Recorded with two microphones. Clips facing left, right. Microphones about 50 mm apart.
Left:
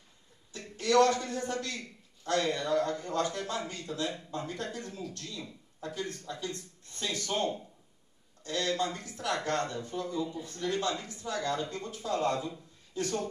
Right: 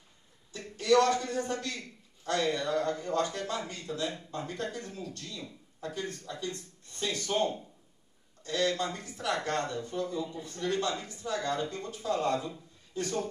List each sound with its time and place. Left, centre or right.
0.6 s speech: centre
8.5 s speech: centre
8.8 s speech: centre
9.1 s speech: centre
12.4 s a sound: centre